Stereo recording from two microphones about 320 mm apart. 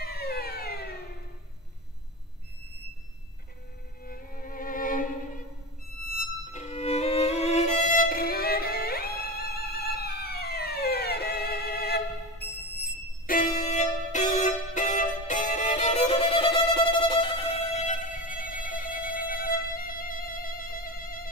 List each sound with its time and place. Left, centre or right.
0.0 s a sound: left
4.0 s violin: left
6.1 s violin: left